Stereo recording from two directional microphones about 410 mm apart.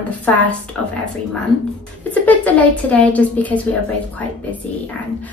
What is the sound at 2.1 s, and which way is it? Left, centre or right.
A woman's voice, centre.